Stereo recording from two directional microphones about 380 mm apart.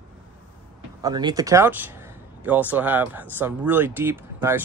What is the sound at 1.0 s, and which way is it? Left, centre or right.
Speech, centre.